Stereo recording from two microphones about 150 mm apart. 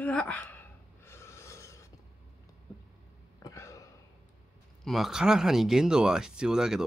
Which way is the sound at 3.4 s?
20° left (ahead or behind).